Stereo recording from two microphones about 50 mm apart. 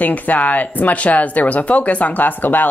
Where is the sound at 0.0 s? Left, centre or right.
Left.